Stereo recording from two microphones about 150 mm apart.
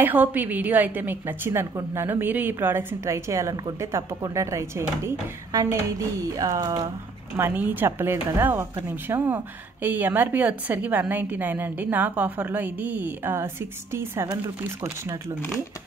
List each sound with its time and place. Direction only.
0.0 s speech: 10° right (ahead or behind)
7.3 s speech: 15° right (ahead or behind)